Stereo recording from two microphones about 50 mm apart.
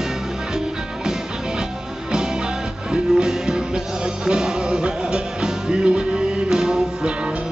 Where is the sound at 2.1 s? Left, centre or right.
Centre.